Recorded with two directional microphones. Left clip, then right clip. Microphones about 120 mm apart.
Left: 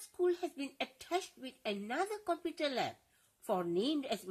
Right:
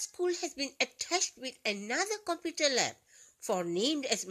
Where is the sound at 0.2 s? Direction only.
20° right (ahead or behind).